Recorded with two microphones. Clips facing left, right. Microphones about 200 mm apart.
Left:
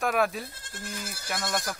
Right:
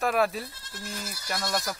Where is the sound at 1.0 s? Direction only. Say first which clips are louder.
Even; 50° left (ahead or behind).